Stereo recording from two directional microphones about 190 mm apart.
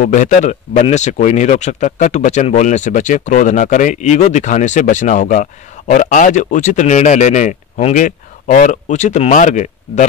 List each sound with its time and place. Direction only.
0.0 s speech: 40° left (ahead or behind)